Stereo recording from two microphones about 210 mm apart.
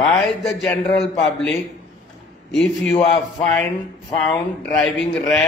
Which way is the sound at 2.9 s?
25° left (ahead or behind).